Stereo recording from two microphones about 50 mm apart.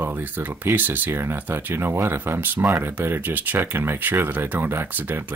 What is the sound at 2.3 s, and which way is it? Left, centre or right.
Speech, right.